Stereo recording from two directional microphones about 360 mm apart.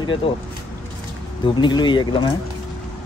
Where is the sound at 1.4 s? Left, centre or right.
Centre.